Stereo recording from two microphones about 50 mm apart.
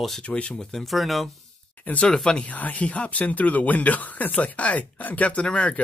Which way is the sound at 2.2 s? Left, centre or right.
Left.